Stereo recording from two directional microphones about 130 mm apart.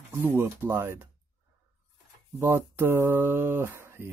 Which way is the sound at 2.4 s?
20° right (ahead or behind).